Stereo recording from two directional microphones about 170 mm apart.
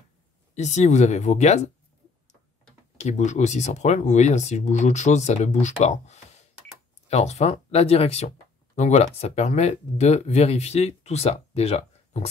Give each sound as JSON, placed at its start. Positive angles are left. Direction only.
{"t": 0.6, "sound": "speech", "side_deg": 40}
{"t": 3.0, "sound": "speech", "side_deg": 45}